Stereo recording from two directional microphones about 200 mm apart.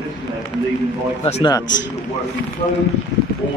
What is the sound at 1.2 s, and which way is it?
Speech, 30° left (ahead or behind).